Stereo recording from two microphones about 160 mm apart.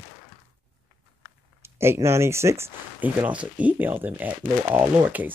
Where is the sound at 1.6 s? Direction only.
15° right (ahead or behind).